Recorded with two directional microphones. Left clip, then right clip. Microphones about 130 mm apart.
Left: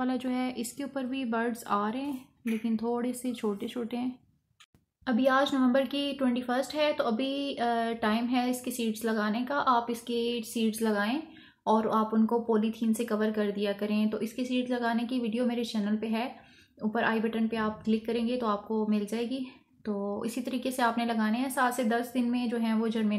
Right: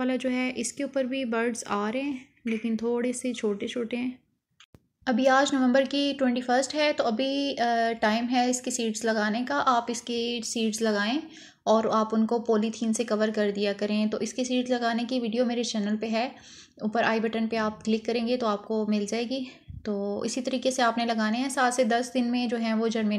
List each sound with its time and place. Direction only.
0.0 s speech: 15° right (ahead or behind)
5.0 s a woman's voice: 25° right (ahead or behind)